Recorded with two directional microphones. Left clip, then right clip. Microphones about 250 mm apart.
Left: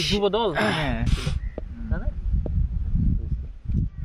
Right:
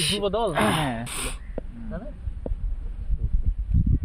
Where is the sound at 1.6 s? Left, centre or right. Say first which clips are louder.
Right 3 dB; centre.